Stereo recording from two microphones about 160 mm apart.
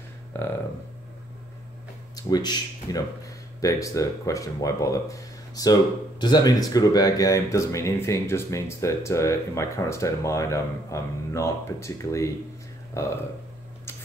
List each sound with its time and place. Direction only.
0.3 s speech: 15° left (ahead or behind)
2.1 s speech: 25° left (ahead or behind)